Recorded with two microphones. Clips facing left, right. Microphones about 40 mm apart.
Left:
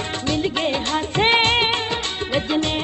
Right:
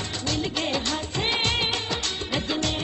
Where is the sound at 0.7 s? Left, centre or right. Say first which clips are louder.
Left 6 dB; left.